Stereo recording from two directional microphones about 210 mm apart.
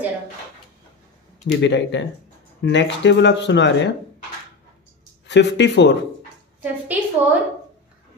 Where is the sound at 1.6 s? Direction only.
60° left (ahead or behind).